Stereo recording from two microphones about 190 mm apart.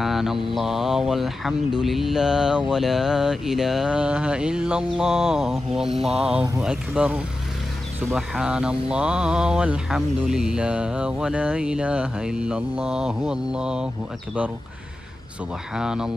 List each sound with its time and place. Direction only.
0.0 s mantra: centre (ahead or behind)
5.9 s a sound: 35° right (ahead or behind)
6.6 s speech: 5° right (ahead or behind)
8.1 s mantra: 5° right (ahead or behind)
15.7 s mantra: 5° right (ahead or behind)